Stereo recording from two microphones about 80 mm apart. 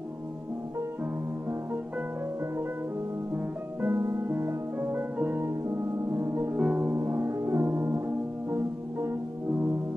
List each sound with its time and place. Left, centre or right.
3.8 s music: right
6.6 s music: centre
6.9 s music: right